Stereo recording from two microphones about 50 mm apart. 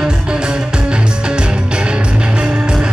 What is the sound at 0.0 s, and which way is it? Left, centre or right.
Music, centre.